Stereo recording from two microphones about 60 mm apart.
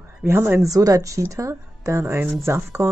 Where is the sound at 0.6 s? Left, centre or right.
Right.